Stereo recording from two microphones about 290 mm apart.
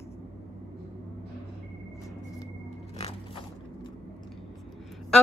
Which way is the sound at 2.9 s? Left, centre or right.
Centre.